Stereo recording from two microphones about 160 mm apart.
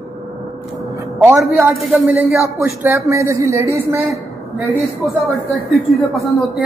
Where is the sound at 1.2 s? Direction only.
5° right (ahead or behind).